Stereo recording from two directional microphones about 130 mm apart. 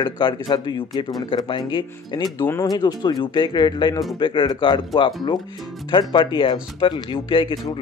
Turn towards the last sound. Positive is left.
turn(degrees=40)  # may be behind; listen again after turning